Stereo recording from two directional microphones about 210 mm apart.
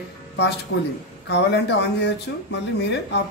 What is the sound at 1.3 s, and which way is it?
Speech, 55° left (ahead or behind).